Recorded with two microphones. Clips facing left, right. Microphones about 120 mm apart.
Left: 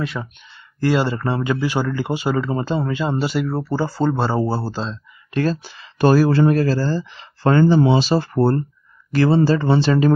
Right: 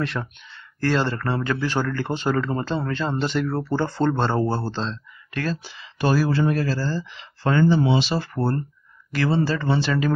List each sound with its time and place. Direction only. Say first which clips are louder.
0.0 s speech: left 1 dB; centre (ahead or behind)
0.7 s speech: left 4 dB; 10° left (ahead or behind)
5.3 s speech: left 7 dB; 30° left (ahead or behind)
5.6 s speech: left 7 dB; 45° left (ahead or behind); by 10.1 s 30° left (ahead or behind)